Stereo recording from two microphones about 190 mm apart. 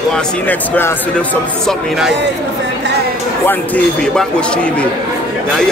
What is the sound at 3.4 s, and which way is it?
A man's voice, 10° left (ahead or behind).